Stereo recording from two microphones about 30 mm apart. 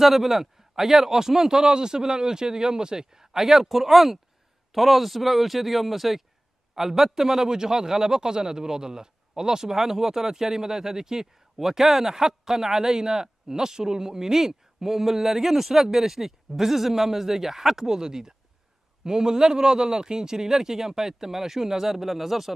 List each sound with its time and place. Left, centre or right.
0.0 s speech: centre
7.4 s speech: right